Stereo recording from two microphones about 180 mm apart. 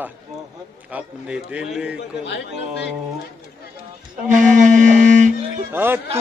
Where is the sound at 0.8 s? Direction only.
5° right (ahead or behind).